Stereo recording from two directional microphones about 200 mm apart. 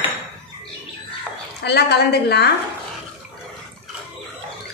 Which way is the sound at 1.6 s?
55° left (ahead or behind).